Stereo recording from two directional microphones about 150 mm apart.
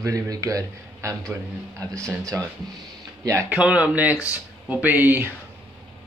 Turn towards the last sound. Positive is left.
turn(degrees=-10)  # may be behind; listen again after turning